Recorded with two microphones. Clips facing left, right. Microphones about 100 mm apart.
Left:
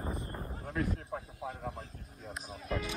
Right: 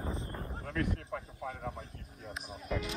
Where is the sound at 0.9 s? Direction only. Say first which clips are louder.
Even; 30° left (ahead or behind).